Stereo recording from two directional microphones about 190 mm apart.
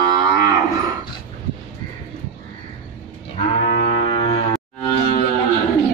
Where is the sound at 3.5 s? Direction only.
30° left (ahead or behind).